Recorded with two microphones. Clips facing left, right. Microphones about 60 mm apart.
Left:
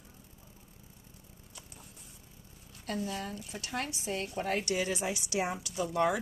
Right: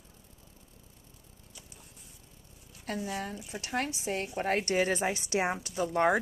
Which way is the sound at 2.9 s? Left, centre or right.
Right.